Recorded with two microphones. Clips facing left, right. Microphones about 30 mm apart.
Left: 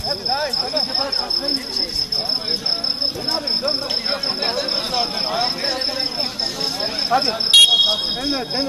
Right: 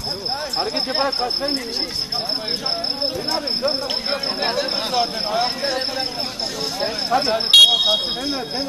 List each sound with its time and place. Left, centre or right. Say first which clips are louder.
0.3 s speech: left 2 dB; left
0.9 s speech: right 2 dB; centre
3.6 s a man's voice: even; centre
6.8 s a man's voice: left 1 dB; centre
7.8 s speech: left 1 dB; left